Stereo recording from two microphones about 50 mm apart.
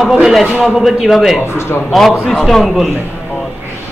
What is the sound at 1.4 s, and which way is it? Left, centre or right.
Speech, left.